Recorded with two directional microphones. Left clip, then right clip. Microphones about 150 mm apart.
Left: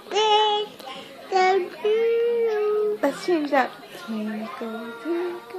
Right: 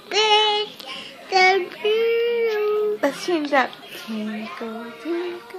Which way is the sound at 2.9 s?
30° right (ahead or behind).